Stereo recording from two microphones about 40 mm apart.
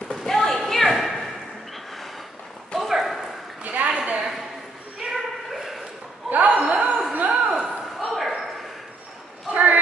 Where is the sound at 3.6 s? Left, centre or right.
Right.